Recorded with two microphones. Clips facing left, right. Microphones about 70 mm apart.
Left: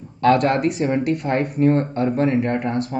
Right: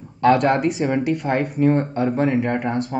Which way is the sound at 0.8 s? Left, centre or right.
Right.